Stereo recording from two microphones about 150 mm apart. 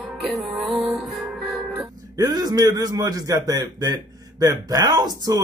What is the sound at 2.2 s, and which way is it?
A man's voice, 25° right (ahead or behind).